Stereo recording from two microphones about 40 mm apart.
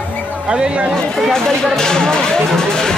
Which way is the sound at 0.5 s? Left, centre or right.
Right.